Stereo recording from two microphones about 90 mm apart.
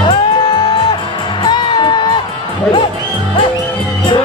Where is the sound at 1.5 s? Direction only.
55° left (ahead or behind).